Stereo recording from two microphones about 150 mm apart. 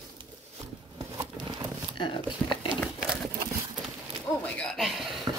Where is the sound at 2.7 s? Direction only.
35° right (ahead or behind).